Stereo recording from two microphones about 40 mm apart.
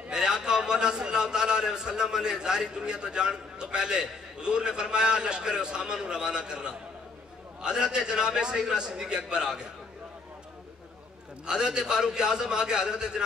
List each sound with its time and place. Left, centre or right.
0.1 s a man's voice: centre
11.4 s a man's voice: centre